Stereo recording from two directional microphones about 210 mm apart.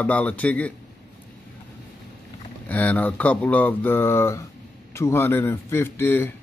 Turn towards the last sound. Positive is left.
turn(degrees=10)  # may be behind; listen again after turning